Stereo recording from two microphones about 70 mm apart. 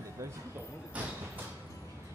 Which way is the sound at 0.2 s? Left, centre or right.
Right.